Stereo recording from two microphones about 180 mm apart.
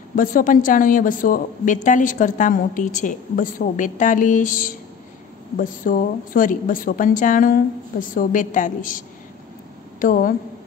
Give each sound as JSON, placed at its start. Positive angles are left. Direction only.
{"t": 0.1, "sound": "a woman's voice", "side_deg": 50}